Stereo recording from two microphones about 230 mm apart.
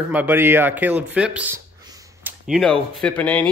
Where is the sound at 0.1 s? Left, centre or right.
Centre.